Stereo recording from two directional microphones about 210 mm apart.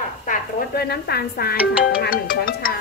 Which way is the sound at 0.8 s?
50° left (ahead or behind).